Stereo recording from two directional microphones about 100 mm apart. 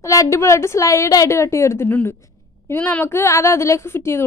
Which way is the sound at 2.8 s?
20° left (ahead or behind).